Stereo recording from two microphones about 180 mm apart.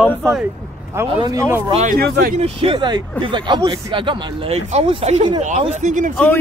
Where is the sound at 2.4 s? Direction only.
30° right (ahead or behind); by 6.1 s 45° right (ahead or behind).